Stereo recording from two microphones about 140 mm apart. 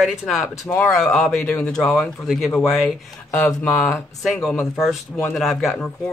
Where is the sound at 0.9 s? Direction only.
Centre (ahead or behind).